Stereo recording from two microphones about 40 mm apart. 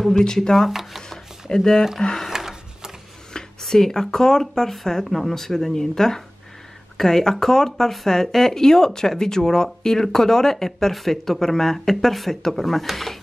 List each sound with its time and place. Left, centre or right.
0.1 s speech: centre
0.7 s shuffling cards: centre
1.0 s a sound: centre
2.0 s speech: centre
2.2 s a sound: centre
3.3 s speech: centre